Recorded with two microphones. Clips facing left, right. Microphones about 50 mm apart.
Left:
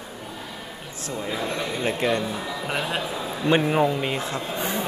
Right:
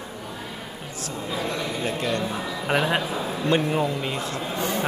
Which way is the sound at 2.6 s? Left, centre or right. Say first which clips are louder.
Right 6 dB; centre.